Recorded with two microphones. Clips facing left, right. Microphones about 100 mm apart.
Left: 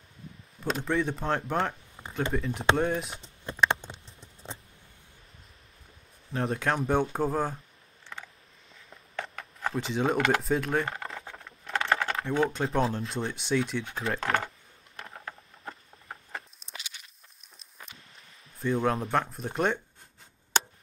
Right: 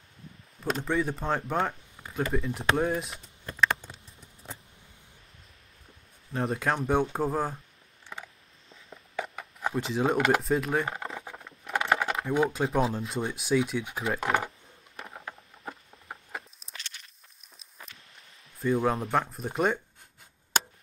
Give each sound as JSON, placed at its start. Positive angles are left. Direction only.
{"t": 0.7, "sound": "speech", "side_deg": 0}
{"t": 2.0, "sound": "a sound", "side_deg": 20}
{"t": 2.3, "sound": "speech", "side_deg": 0}
{"t": 3.2, "sound": "patter", "side_deg": 25}
{"t": 6.3, "sound": "speech", "side_deg": 0}
{"t": 8.1, "sound": "a sound", "side_deg": -15}
{"t": 9.8, "sound": "speech", "side_deg": 0}
{"t": 15.0, "sound": "patter", "side_deg": -5}
{"t": 18.6, "sound": "speech", "side_deg": -5}